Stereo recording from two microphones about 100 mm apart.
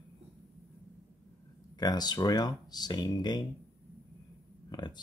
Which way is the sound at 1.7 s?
45° left (ahead or behind).